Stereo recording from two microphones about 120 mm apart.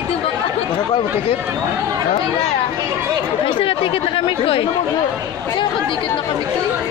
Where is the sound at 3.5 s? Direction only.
45° left (ahead or behind).